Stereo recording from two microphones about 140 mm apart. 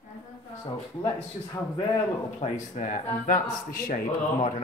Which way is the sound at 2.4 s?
60° left (ahead or behind).